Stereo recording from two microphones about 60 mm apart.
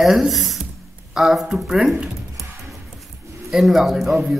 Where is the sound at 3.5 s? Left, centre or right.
Centre.